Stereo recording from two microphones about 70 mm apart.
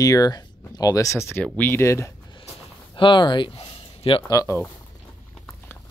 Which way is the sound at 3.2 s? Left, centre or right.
Left.